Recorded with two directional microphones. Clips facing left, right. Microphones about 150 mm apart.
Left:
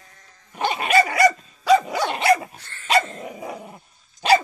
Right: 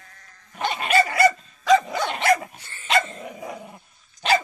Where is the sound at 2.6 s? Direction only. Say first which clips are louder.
Left 1 dB; 10° right (ahead or behind).